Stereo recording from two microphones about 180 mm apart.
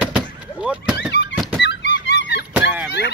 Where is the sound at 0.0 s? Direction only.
5° right (ahead or behind).